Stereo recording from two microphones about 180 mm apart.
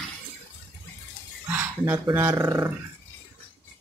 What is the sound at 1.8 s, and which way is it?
Speech, 15° right (ahead or behind).